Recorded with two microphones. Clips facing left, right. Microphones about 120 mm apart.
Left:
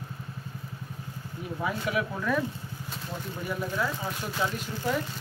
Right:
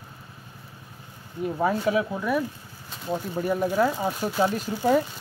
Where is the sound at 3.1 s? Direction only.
40° right (ahead or behind).